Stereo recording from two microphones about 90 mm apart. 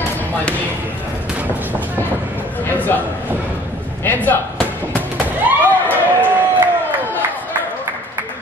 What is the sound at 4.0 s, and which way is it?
Music, 20° left (ahead or behind).